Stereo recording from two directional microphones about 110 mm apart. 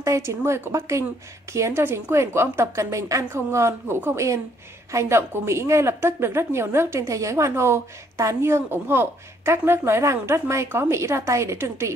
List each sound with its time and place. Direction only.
0.0 s a woman's voice: 25° right (ahead or behind)